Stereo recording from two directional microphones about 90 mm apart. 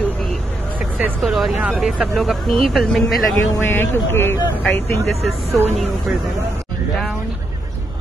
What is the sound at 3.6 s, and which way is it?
Speech, 25° left (ahead or behind).